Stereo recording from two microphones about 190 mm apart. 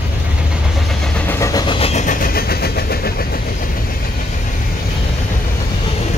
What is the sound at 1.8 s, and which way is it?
Vehicle, 35° left (ahead or behind).